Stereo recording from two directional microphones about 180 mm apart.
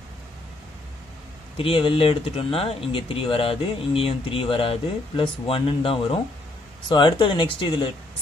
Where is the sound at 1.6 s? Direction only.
30° left (ahead or behind).